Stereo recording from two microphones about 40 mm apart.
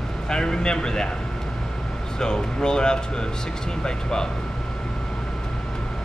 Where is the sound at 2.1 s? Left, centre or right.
Centre.